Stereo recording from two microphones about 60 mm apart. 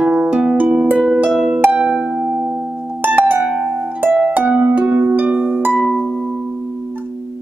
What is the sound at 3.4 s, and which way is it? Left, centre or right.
Harp, centre.